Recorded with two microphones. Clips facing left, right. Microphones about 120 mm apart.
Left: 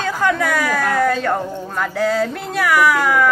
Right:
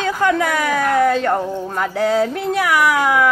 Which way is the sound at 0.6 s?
20° right (ahead or behind).